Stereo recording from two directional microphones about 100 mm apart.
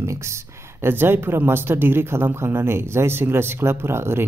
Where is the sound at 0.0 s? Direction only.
30° right (ahead or behind).